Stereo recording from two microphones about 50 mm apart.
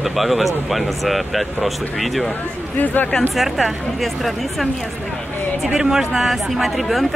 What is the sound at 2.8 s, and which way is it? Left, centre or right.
Speech, left.